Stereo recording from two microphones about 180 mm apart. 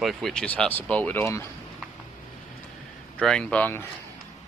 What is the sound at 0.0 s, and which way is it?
Speech, centre (ahead or behind).